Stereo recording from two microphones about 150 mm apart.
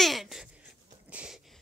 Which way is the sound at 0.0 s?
Centre (ahead or behind).